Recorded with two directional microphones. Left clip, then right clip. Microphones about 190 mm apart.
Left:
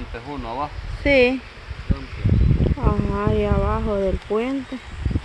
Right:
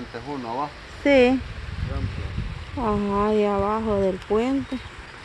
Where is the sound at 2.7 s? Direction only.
15° right (ahead or behind).